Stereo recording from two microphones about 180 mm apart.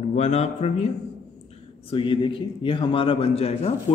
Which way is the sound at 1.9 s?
30° left (ahead or behind).